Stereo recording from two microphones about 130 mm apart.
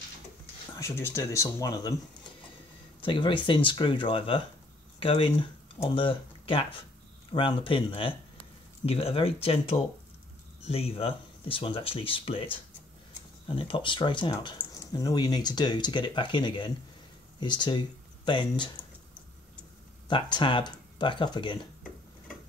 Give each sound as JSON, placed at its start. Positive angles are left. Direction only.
{"t": 0.7, "sound": "speech", "side_deg": 20}
{"t": 3.0, "sound": "speech", "side_deg": 40}
{"t": 13.5, "sound": "speech", "side_deg": 40}
{"t": 20.1, "sound": "speech", "side_deg": 35}